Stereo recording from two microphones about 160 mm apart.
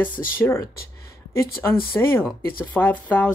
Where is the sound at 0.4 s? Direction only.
20° left (ahead or behind).